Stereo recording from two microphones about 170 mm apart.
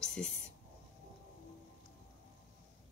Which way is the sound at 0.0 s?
5° left (ahead or behind).